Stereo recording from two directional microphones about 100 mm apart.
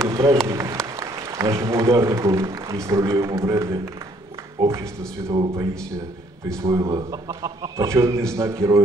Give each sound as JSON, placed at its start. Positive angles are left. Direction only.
{"t": 0.1, "sound": "a man's voice", "side_deg": -35}
{"t": 4.6, "sound": "speech", "side_deg": -55}
{"t": 6.6, "sound": "a man's voice", "side_deg": -30}